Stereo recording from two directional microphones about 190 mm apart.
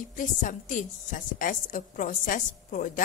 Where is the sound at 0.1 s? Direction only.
40° left (ahead or behind).